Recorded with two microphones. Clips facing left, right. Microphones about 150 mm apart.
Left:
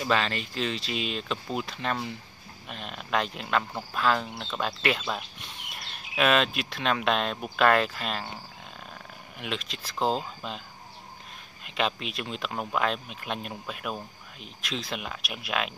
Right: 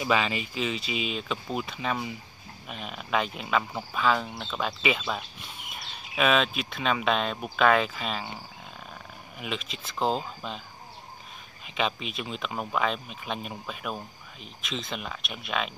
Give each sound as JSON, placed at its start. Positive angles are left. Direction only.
{"t": 0.0, "sound": "speech", "side_deg": -5}
{"t": 9.4, "sound": "speech", "side_deg": 0}
{"t": 11.6, "sound": "speech", "side_deg": 0}